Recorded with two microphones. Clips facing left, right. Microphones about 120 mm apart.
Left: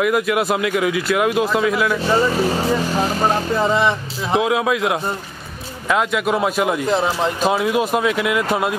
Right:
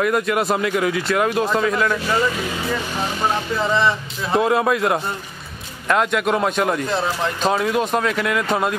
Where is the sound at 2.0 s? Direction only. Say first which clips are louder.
Left 4 dB; 30° left (ahead or behind).